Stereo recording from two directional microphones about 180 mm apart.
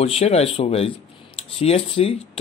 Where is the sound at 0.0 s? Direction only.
35° left (ahead or behind).